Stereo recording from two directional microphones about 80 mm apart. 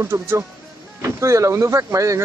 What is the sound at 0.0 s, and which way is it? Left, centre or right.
Speech, right.